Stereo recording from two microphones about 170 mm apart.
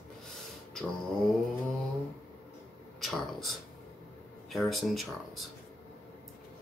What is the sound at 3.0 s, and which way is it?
Speech, centre (ahead or behind).